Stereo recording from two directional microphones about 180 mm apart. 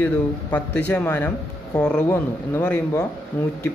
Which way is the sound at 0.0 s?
10° left (ahead or behind).